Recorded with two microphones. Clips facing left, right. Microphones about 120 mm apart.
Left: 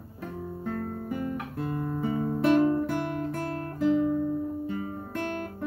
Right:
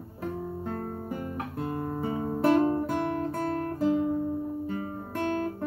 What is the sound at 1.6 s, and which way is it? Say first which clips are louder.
Music: left 1 dB; 25° right (ahead or behind).